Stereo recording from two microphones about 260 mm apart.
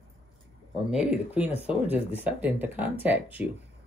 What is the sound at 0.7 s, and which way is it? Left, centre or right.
Speech, centre.